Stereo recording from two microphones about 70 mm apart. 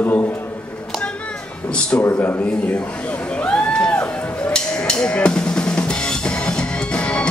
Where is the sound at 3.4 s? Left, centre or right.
Centre.